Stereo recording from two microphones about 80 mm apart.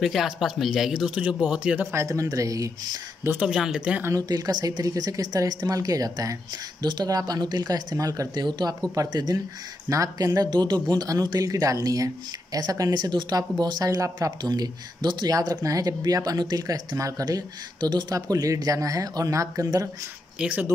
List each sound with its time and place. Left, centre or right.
0.0 s speech: centre
1.9 s speech: right
3.3 s speech: centre
4.3 s speech: right
6.8 s speech: right
8.5 s speech: right
8.9 s speech: right
15.6 s speech: right
18.1 s speech: right
20.3 s speech: centre